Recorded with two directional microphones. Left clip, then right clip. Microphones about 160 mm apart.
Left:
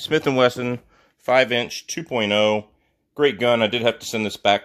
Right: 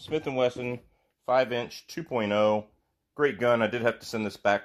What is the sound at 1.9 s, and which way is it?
Speech, 30° left (ahead or behind).